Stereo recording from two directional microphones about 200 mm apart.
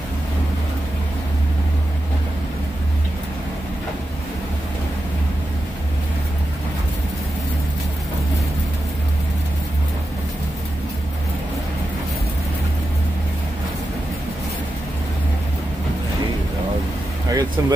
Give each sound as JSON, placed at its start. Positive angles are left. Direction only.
{"t": 17.3, "sound": "vehicle", "side_deg": -20}